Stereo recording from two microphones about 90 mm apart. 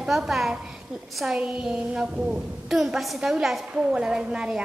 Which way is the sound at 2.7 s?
5° right (ahead or behind).